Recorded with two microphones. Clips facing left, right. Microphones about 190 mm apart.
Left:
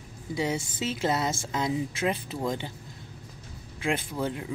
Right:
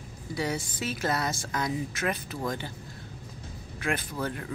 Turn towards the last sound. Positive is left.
turn(degrees=20)  # may be behind; listen again after turning